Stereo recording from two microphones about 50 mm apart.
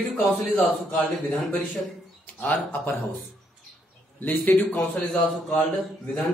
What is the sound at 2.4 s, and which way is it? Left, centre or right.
Speech, left.